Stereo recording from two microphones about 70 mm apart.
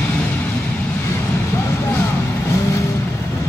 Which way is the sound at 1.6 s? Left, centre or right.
Left.